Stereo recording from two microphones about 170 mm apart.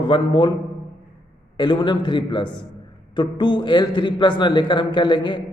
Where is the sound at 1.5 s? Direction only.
25° left (ahead or behind).